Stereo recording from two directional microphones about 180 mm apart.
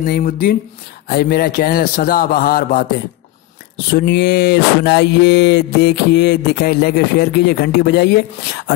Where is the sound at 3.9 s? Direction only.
65° left (ahead or behind).